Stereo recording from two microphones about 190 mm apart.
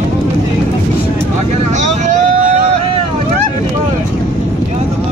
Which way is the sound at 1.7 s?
40° right (ahead or behind).